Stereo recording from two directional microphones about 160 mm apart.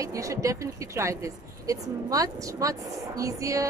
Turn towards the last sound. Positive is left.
turn(degrees=-20)  # may be behind; listen again after turning